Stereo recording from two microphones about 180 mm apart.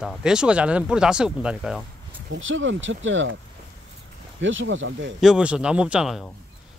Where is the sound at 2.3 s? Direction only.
90° right.